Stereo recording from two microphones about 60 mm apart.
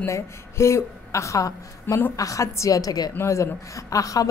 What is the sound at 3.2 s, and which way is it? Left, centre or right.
A woman's voice, left.